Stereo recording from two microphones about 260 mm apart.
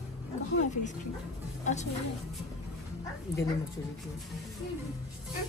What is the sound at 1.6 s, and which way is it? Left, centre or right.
Speech, left.